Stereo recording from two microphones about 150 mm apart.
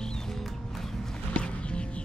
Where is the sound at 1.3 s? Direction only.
5° left (ahead or behind).